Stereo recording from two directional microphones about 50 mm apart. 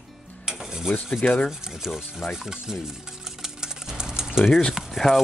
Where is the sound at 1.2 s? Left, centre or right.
Left.